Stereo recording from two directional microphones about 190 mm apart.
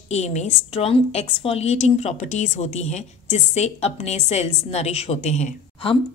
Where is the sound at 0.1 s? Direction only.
35° left (ahead or behind).